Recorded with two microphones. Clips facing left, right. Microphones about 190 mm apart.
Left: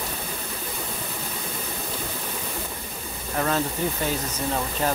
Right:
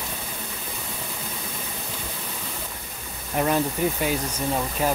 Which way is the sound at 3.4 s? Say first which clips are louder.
Right 2 dB; 15° right (ahead or behind).